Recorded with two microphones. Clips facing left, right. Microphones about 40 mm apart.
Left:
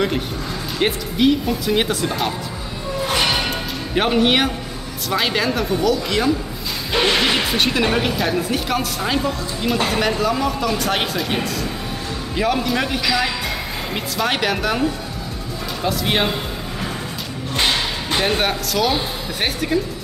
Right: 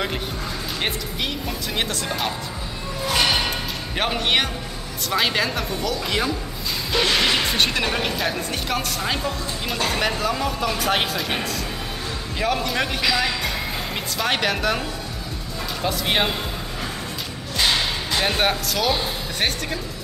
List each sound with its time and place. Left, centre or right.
0.7 s speech: centre
3.4 s music: centre
5.1 s speech: centre
6.9 s music: left
7.5 s speech: centre
18.2 s speech: centre